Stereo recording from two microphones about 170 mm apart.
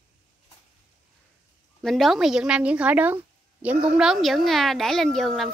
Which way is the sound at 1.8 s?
Centre (ahead or behind).